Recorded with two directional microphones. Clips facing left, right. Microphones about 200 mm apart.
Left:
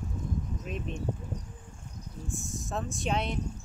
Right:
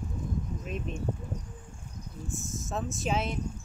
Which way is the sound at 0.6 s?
Centre (ahead or behind).